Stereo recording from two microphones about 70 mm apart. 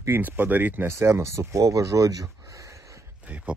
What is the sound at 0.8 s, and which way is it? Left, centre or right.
Speech, right.